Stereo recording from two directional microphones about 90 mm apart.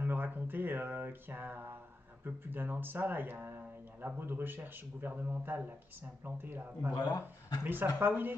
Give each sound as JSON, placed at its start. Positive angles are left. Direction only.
{"t": 0.0, "sound": "music", "side_deg": -20}
{"t": 2.4, "sound": "speech", "side_deg": -20}
{"t": 7.0, "sound": "speech", "side_deg": 45}
{"t": 7.6, "sound": "speech", "side_deg": -20}